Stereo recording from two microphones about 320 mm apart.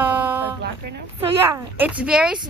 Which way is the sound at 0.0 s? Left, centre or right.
Centre.